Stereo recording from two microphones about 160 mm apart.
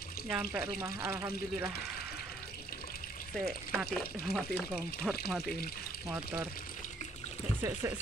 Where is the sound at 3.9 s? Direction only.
5° left (ahead or behind).